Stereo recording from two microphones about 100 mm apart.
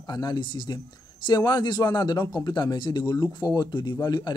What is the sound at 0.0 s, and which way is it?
A man's voice, 45° left (ahead or behind).